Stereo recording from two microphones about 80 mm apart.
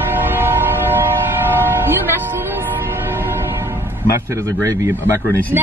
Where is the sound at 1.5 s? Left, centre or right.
Right.